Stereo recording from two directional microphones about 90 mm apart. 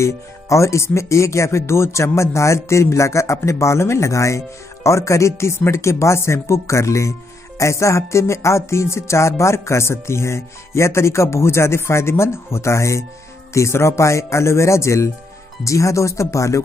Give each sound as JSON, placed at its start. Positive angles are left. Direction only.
{"t": 0.0, "sound": "speech", "side_deg": 35}